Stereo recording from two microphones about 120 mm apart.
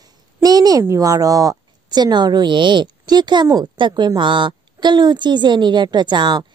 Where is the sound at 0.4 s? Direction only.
35° right (ahead or behind).